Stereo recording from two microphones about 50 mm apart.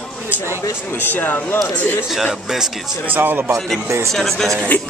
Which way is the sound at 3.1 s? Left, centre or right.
Right.